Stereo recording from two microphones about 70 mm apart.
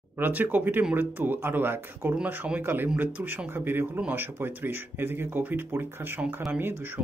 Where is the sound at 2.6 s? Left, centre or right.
Right.